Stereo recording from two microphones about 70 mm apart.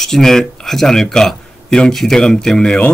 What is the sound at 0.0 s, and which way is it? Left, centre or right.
A man's voice, centre.